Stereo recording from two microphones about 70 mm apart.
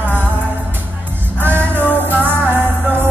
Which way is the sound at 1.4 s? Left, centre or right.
Right.